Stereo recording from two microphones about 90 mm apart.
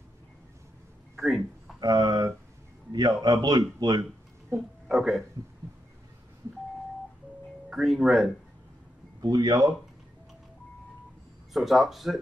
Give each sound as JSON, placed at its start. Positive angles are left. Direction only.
{"t": 1.1, "sound": "a sound", "side_deg": 0}
{"t": 1.8, "sound": "a man's voice", "side_deg": -45}
{"t": 4.5, "sound": "speech", "side_deg": -30}
{"t": 4.8, "sound": "speech", "side_deg": 0}
{"t": 7.7, "sound": "speech", "side_deg": -5}
{"t": 9.2, "sound": "a man's voice", "side_deg": -50}
{"t": 11.5, "sound": "speech", "side_deg": 0}